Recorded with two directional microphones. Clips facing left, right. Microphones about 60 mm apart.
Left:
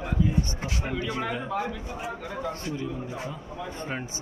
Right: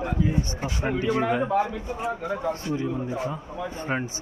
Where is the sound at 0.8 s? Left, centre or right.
Right.